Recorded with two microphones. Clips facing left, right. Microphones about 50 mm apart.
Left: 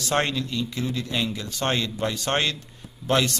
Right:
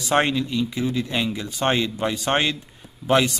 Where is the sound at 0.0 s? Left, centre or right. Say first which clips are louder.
Right 4 dB; centre.